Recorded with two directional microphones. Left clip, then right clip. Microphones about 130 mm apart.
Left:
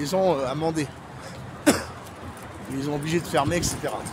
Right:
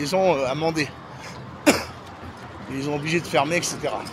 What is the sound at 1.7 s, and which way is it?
Cough, 10° left (ahead or behind).